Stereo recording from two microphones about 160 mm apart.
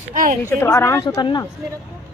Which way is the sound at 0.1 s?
55° right (ahead or behind).